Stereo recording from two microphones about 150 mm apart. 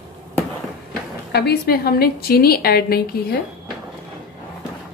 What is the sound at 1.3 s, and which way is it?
A woman's voice, 90° left.